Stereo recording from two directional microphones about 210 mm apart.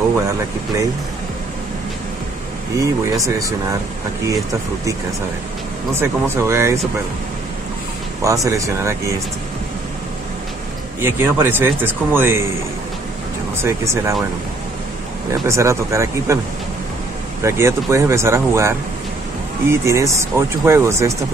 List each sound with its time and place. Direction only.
0.1 s speech: 15° right (ahead or behind)
2.8 s speech: 15° right (ahead or behind)
5.9 s speech: 10° right (ahead or behind)
8.2 s speech: 15° right (ahead or behind)
11.0 s speech: 10° right (ahead or behind)
13.6 s speech: 15° right (ahead or behind)
15.4 s speech: 15° right (ahead or behind)
17.4 s speech: 15° right (ahead or behind)